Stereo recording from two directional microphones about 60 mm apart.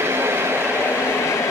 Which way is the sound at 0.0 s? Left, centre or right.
Right.